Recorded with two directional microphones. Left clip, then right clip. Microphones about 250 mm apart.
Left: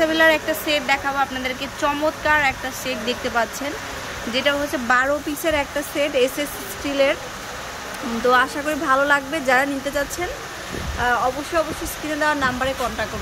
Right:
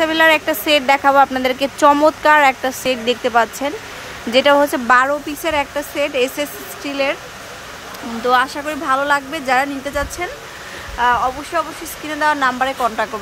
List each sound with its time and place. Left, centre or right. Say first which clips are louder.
0.0 s speech: right 3 dB; centre
8.3 s speech: right 2 dB; centre